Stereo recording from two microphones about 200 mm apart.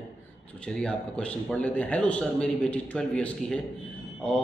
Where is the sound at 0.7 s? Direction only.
5° left (ahead or behind).